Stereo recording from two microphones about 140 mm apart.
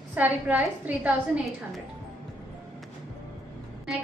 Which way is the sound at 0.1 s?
10° right (ahead or behind).